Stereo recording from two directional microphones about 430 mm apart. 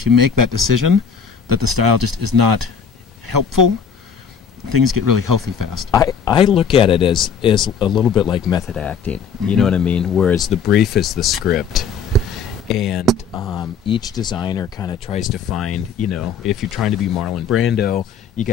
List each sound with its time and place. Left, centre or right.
0.0 s speech: right
5.9 s speech: centre
8.0 s speech: centre
8.3 s speech: centre
15.2 s speech: centre
15.6 s speech: left
16.2 s speech: centre
17.7 s speech: centre